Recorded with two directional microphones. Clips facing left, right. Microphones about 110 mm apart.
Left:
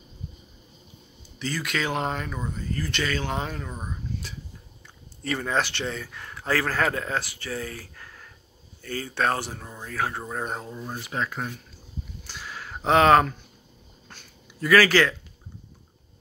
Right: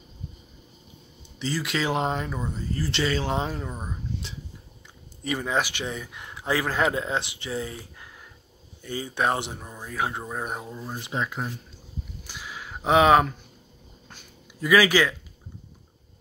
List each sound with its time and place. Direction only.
1.4 s a man's voice: 25° right (ahead or behind); by 10.9 s 5° right (ahead or behind)
11.0 s a man's voice: 20° right (ahead or behind)
12.3 s a sound: 10° right (ahead or behind)